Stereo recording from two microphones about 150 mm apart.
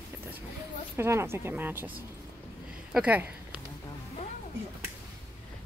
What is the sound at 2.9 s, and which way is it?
Speech, 10° right (ahead or behind).